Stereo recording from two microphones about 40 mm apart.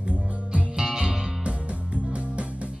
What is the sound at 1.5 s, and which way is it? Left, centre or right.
Music, right.